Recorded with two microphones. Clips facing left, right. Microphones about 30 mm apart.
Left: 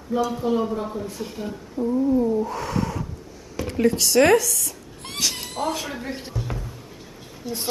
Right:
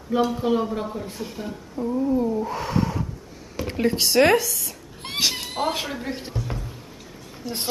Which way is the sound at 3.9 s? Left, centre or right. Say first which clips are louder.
Even; right.